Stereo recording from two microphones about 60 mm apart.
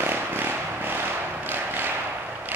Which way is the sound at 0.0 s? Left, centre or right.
Right.